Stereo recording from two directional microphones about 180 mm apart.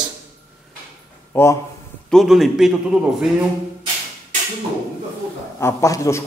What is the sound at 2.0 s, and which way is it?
A man's voice, centre (ahead or behind).